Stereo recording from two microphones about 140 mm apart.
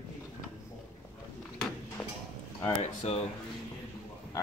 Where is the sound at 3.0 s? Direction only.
50° left (ahead or behind).